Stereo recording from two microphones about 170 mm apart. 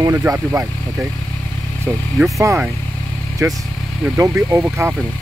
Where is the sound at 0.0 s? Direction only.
15° right (ahead or behind).